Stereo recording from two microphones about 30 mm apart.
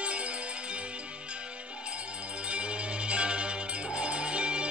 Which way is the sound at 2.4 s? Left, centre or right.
Right.